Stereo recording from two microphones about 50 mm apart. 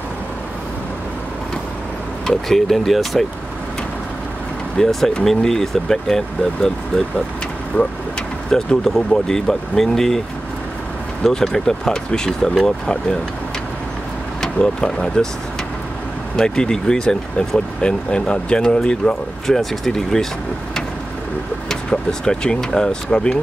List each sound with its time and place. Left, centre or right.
2.2 s speech: centre
4.8 s speech: centre
7.7 s speech: left
8.5 s speech: centre
11.2 s speech: centre
14.4 s speech: centre
16.3 s speech: centre
21.6 s speech: centre